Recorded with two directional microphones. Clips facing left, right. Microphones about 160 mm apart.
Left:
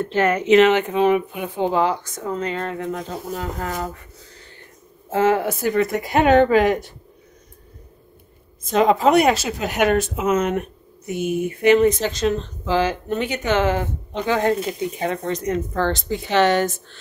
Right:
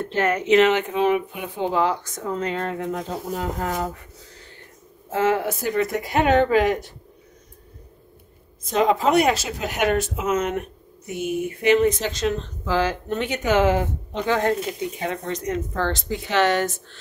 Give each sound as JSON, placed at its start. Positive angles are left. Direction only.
{"t": 0.1, "sound": "speech", "side_deg": 90}
{"t": 1.6, "sound": "speech", "side_deg": 25}
{"t": 2.1, "sound": "speech", "side_deg": 0}
{"t": 5.1, "sound": "speech", "side_deg": 40}
{"t": 5.6, "sound": "speech", "side_deg": 60}
{"t": 8.7, "sound": "speech", "side_deg": 60}
{"t": 11.6, "sound": "speech", "side_deg": 50}
{"t": 12.6, "sound": "speech", "side_deg": 20}
{"t": 13.1, "sound": "speech", "side_deg": 5}
{"t": 13.5, "sound": "speech", "side_deg": -10}
{"t": 14.1, "sound": "speech", "side_deg": 10}
{"t": 14.7, "sound": "speech", "side_deg": 40}